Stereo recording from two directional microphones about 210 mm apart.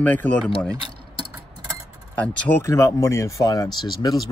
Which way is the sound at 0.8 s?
20° right (ahead or behind).